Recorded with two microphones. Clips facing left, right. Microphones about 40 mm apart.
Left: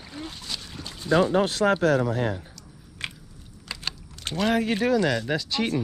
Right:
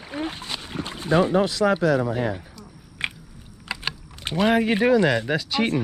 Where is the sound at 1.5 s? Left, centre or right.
Left.